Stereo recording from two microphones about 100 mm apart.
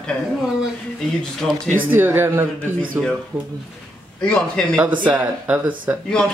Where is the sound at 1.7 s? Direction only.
20° right (ahead or behind).